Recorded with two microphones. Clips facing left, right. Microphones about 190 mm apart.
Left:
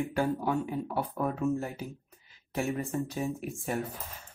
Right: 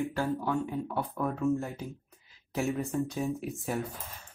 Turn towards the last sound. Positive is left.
turn(degrees=0)  # may be behind; listen again after turning